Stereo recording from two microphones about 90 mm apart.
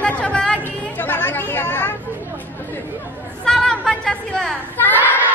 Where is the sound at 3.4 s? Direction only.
10° left (ahead or behind).